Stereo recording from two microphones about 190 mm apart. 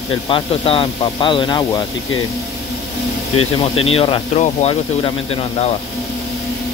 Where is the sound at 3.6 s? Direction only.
30° left (ahead or behind).